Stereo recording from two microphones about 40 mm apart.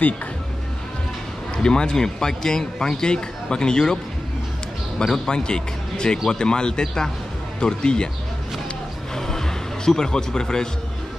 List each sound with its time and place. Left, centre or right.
1.6 s a man's voice: centre
9.1 s music: centre